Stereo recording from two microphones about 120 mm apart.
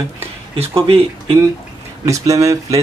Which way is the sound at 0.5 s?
50° right (ahead or behind).